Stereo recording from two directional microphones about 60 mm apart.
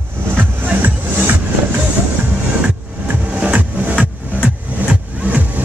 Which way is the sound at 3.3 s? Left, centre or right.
Centre.